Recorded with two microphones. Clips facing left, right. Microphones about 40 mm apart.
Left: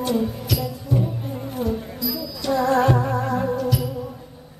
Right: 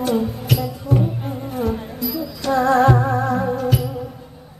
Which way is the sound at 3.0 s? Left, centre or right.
Right.